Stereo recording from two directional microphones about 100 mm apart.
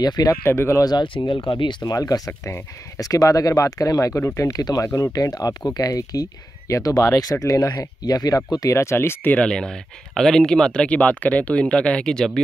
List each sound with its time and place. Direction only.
0.0 s speech: 40° left (ahead or behind)
0.3 s speech: 25° left (ahead or behind)
0.8 s speech: 50° left (ahead or behind); by 12.3 s 5° left (ahead or behind)